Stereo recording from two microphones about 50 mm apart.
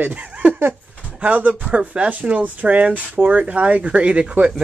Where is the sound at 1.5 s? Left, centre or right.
Centre.